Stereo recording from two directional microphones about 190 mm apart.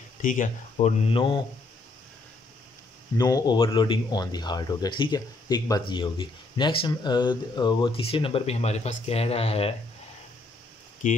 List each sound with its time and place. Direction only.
0.2 s speech: 45° left (ahead or behind); by 1.4 s 25° left (ahead or behind)
3.2 s speech: 20° left (ahead or behind)